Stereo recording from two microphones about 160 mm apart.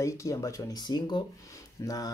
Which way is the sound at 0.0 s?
20° left (ahead or behind).